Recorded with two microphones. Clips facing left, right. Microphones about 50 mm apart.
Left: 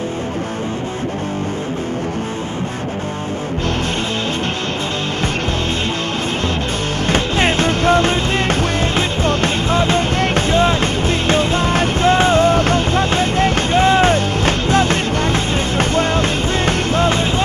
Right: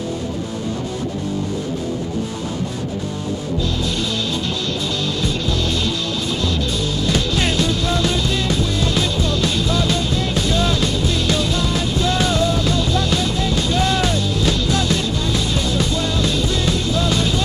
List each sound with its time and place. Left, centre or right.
7.1 s music: left